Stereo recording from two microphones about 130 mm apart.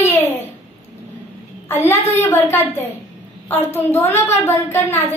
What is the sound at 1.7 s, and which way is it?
A woman's voice, 15° left (ahead or behind).